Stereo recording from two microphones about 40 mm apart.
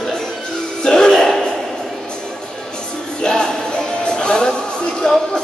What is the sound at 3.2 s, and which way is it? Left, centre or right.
Music, left.